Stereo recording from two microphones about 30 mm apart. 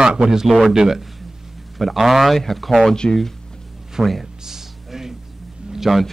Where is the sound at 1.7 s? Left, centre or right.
Centre.